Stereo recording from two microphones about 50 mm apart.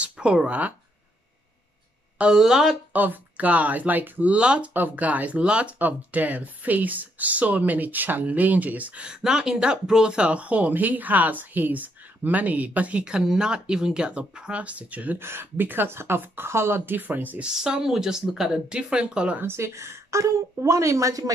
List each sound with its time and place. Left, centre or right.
0.0 s speech: right
2.3 s speech: centre
2.9 s speech: right
4.4 s speech: right
4.7 s speech: right
9.0 s speech: centre; by 13.0 s right
13.0 s speech: centre; by 15.1 s right
15.1 s speech: right
17.4 s speech: centre
19.4 s a woman's voice: right